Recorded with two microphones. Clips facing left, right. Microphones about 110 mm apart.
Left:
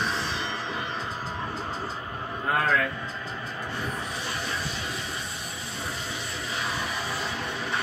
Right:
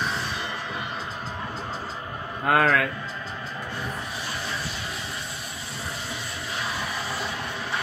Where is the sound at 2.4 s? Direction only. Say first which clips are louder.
Right 4 dB; 80° right.